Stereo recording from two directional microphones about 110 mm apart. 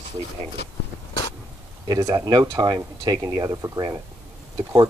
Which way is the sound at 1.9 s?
35° right (ahead or behind).